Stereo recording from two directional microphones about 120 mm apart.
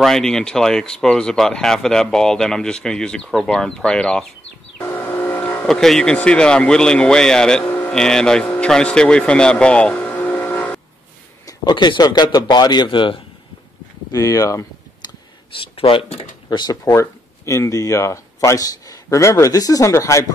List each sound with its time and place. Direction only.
0.0 s speech: 5° left (ahead or behind)
4.7 s train: 20° left (ahead or behind)
5.7 s speech: 5° left (ahead or behind)
7.6 s a sound: 15° left (ahead or behind)
7.9 s speech: 5° left (ahead or behind)
11.4 s speech: 40° left (ahead or behind)
14.1 s speech: 30° left (ahead or behind)
15.6 s speech: 50° left (ahead or behind)
16.4 s speech: 35° left (ahead or behind)
16.9 s speech: 20° left (ahead or behind)